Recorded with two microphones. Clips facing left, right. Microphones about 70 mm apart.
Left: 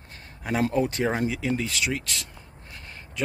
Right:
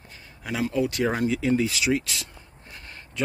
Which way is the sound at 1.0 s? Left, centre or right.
Centre.